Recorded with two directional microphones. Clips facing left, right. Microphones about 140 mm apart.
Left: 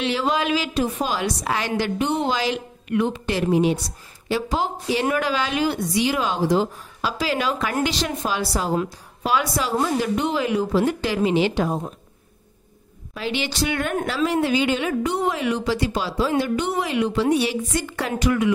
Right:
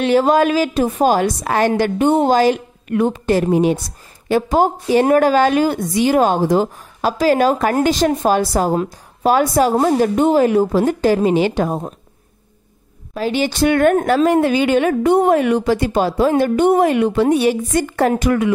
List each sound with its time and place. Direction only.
0.0 s a woman's voice: 45° right (ahead or behind)
13.1 s a woman's voice: 45° right (ahead or behind)